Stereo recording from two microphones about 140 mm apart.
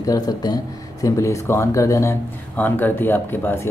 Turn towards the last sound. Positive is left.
turn(degrees=15)  # may be behind; listen again after turning